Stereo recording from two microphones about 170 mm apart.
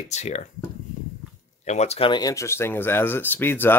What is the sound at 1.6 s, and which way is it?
Speech, 40° left (ahead or behind).